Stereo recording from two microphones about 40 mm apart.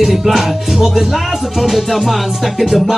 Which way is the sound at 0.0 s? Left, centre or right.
Centre.